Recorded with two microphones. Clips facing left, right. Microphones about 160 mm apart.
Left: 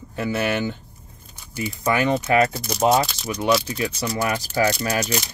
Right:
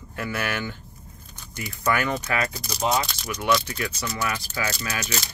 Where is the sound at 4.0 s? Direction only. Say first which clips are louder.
Left 6 dB; 30° left (ahead or behind).